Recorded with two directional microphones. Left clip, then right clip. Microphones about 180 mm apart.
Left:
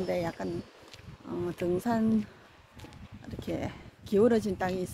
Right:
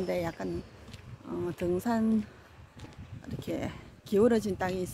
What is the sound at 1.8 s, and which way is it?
Speech, 20° right (ahead or behind).